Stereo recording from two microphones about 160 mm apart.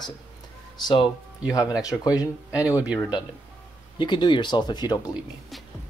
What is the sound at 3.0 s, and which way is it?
Speech, 30° left (ahead or behind).